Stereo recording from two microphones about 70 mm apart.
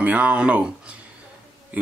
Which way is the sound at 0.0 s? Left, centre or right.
Right.